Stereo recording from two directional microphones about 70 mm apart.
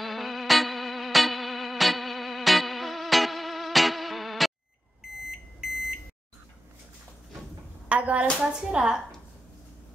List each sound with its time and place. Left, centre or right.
0.0 s music: centre
7.9 s speech: centre